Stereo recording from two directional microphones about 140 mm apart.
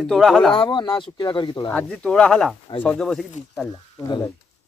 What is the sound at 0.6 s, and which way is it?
Speech, 30° left (ahead or behind).